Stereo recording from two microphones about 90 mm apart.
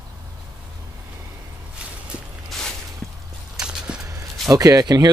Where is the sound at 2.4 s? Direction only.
5° left (ahead or behind).